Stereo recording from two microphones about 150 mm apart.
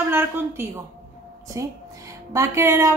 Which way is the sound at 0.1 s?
15° right (ahead or behind).